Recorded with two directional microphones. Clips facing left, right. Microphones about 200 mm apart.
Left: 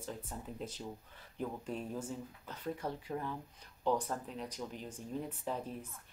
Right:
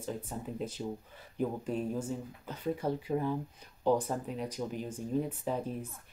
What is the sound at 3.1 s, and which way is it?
Speech, 15° right (ahead or behind).